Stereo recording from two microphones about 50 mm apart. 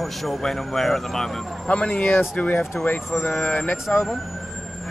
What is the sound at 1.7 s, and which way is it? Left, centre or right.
Speech, left.